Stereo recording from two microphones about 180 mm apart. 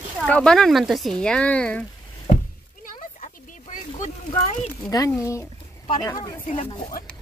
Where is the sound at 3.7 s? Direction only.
40° left (ahead or behind).